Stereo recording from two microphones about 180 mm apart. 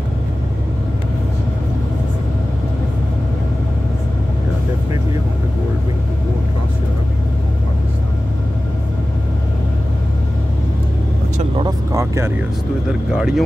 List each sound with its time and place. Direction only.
11.5 s vehicle: 20° right (ahead or behind)
13.1 s speech: centre (ahead or behind)